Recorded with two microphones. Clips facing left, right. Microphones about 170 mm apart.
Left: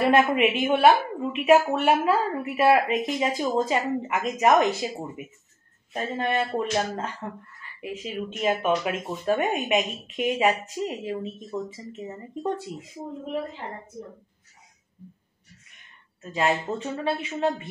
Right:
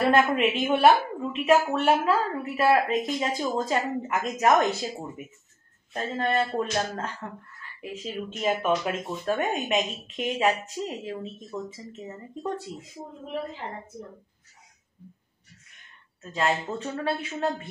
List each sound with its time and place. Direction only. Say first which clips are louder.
0.0 s a woman's voice: left 2 dB; 10° left (ahead or behind)
5.9 s a woman's voice: even; 10° left (ahead or behind)
12.7 s a woman's voice: left 2 dB; 10° left (ahead or behind)
16.2 s speech: left 2 dB; 5° left (ahead or behind)